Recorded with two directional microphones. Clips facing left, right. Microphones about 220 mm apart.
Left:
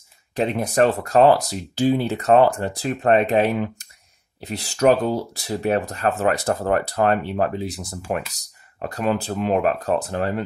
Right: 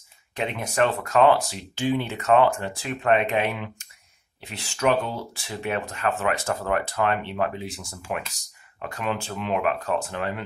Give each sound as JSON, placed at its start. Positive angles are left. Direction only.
{"t": 0.4, "sound": "speech", "side_deg": 35}